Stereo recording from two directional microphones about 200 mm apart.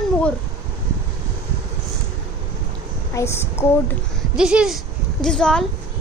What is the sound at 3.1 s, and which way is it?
Speech, 15° left (ahead or behind).